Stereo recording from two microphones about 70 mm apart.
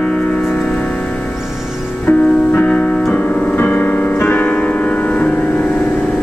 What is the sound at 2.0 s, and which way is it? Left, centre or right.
Music, left.